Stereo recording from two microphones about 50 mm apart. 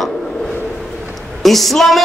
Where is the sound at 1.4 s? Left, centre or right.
Centre.